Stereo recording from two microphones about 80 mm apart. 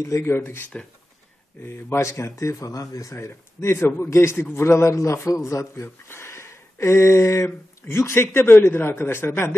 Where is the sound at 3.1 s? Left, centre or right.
Left.